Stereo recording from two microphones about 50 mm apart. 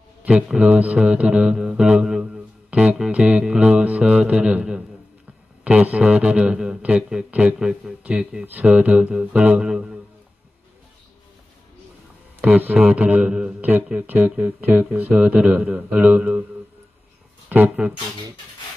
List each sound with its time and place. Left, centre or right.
0.3 s a man's voice: right
7.5 s a man's voice: centre
8.0 s speech: right
9.6 s a man's voice: centre
12.4 s a man's voice: right
13.6 s speech: right
17.5 s speech: right